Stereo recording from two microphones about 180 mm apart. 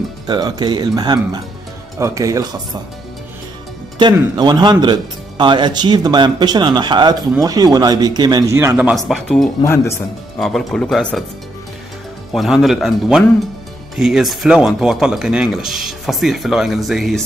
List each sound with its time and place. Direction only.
0.3 s speech: 25° right (ahead or behind)
4.0 s speech: 25° right (ahead or behind)
8.7 s speech: 5° right (ahead or behind)
9.6 s speech: 15° left (ahead or behind)
10.4 s speech: centre (ahead or behind)
12.3 s speech: centre (ahead or behind)